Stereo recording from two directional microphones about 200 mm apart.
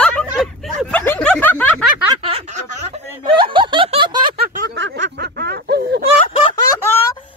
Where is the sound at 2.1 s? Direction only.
30° right (ahead or behind).